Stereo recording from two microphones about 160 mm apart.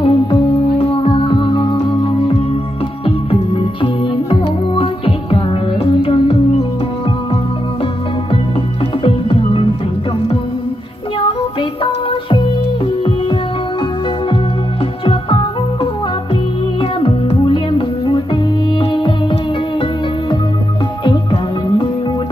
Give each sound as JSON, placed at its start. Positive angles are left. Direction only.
{"t": 0.0, "sound": "music", "side_deg": 35}
{"t": 9.0, "sound": "music", "side_deg": 35}
{"t": 11.8, "sound": "music", "side_deg": 30}
{"t": 15.0, "sound": "music", "side_deg": 30}
{"t": 17.0, "sound": "music", "side_deg": 35}
{"t": 21.0, "sound": "music", "side_deg": 30}